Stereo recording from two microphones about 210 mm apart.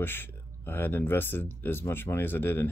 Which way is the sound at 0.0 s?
10° left (ahead or behind).